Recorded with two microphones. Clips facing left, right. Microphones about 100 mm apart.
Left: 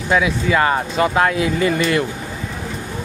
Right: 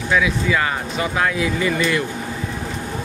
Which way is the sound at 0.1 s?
35° left (ahead or behind).